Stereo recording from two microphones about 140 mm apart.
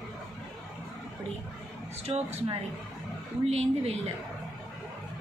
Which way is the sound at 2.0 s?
50° right (ahead or behind).